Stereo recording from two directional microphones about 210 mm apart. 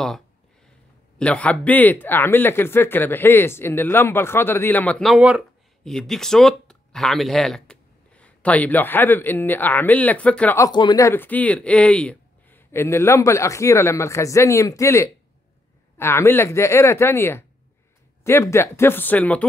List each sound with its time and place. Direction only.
1.1 s speech: 5° left (ahead or behind)